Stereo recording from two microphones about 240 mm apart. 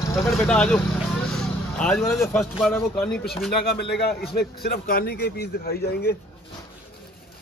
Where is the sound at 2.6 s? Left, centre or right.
Centre.